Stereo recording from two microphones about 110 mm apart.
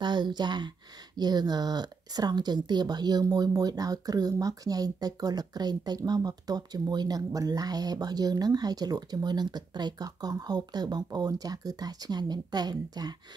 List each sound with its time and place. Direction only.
0.0 s speech: 45° right (ahead or behind)